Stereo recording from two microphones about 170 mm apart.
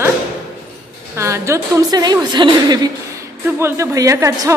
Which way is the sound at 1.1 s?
15° right (ahead or behind).